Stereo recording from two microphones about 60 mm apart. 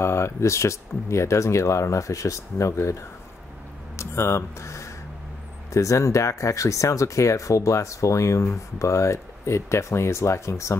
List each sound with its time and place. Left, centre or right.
0.0 s speech: left
3.9 s a sound: left
5.7 s speech: left